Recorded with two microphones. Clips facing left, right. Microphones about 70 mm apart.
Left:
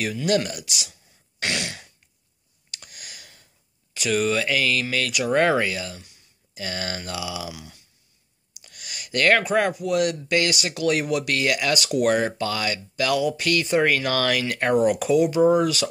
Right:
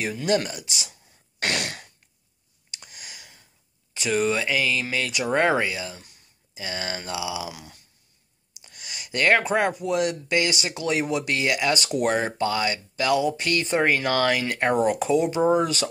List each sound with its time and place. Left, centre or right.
0.0 s speech: right
1.4 s throat clearing: right
2.7 s a sound: right
3.9 s speech: right
7.5 s speech: right
8.5 s a sound: right
9.4 s speech: right